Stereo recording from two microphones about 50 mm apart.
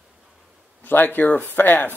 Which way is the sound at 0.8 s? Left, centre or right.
Left.